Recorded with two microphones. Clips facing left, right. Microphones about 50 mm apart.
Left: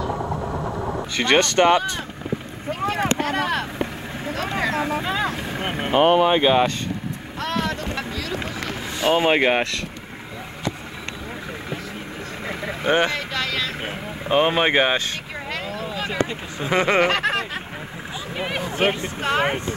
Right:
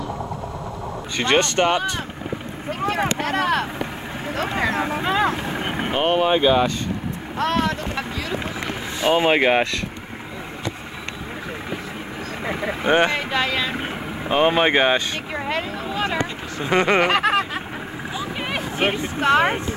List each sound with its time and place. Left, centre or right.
0.1 s vehicle: centre
1.6 s speech: left
2.7 s boat: centre
3.2 s speech: centre
5.6 s vehicle: centre
6.3 s speech: centre
7.3 s boat: centre
9.0 s snicker: centre
12.4 s boat: centre
14.3 s snicker: centre
15.4 s a sound: centre
16.6 s snicker: centre
18.4 s a sound: centre